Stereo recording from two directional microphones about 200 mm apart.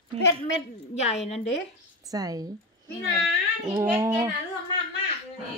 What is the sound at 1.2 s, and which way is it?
Speech, 35° left (ahead or behind).